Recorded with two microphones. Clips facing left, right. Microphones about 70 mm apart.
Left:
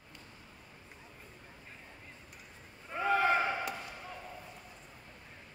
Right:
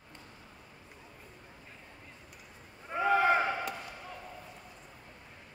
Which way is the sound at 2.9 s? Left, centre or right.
Centre.